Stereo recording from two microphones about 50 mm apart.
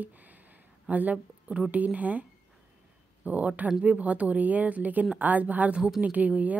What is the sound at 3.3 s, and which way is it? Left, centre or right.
Speech, right.